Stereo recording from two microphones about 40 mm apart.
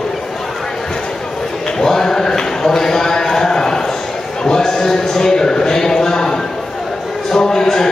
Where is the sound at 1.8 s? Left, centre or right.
Centre.